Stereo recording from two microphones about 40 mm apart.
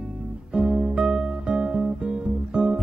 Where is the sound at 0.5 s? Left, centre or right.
Right.